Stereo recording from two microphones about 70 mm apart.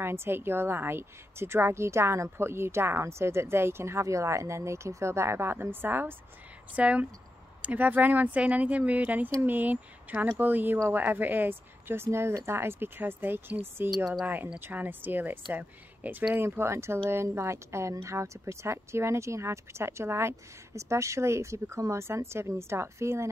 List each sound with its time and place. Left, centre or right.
0.0 s a woman's voice: right
6.7 s a woman's voice: right
16.3 s a woman's voice: right